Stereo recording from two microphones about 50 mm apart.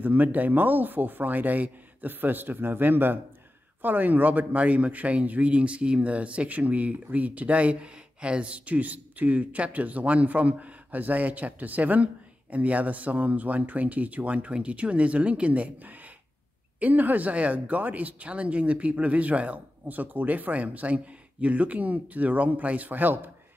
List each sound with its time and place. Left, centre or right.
0.0 s a man's voice: right